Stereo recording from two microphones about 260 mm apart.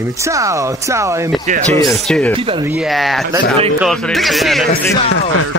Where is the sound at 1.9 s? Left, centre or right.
Centre.